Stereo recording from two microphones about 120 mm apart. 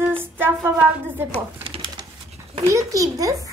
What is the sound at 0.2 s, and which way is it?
Music, 15° right (ahead or behind).